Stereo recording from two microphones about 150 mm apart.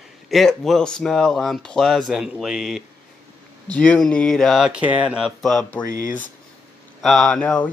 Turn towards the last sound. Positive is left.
turn(degrees=5)  # may be behind; listen again after turning